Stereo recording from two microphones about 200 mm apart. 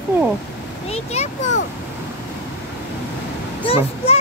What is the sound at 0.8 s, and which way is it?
Speech, 30° left (ahead or behind).